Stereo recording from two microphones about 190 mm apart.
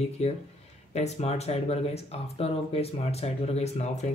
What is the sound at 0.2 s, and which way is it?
Speech, 35° left (ahead or behind).